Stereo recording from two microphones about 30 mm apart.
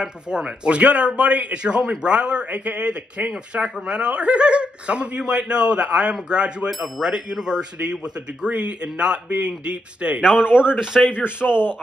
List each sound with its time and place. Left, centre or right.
0.0 s speech: right
0.7 s a man's voice: right
2.5 s speech: right
3.8 s a man's voice: right
8.5 s a man's voice: right
10.2 s speech: right
11.4 s speech: left